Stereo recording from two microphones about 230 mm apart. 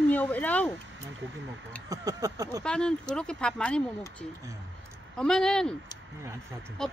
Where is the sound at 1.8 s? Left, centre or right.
Centre.